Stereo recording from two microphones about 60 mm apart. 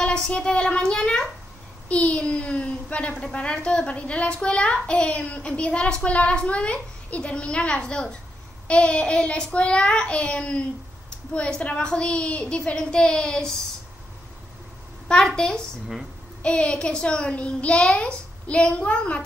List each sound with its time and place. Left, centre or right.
0.0 s a child's voice: centre
15.0 s a child's voice: centre